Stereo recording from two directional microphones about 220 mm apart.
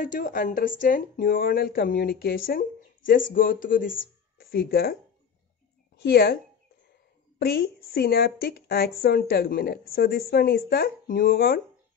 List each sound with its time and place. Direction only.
0.0 s speech: 35° left (ahead or behind)
6.0 s a woman's voice: 45° left (ahead or behind)